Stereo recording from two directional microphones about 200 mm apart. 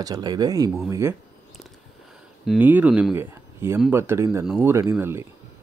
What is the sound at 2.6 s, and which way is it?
Speech, 10° right (ahead or behind).